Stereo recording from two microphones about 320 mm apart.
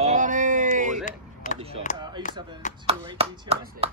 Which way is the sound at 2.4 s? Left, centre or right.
Centre.